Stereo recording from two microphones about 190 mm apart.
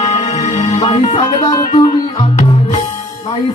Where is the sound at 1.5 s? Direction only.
20° left (ahead or behind).